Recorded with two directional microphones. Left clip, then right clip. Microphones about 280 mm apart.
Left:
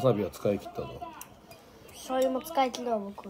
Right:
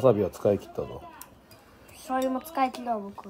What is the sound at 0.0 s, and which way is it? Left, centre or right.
Speech, right.